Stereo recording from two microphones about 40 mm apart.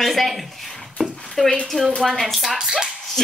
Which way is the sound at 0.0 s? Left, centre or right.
Centre.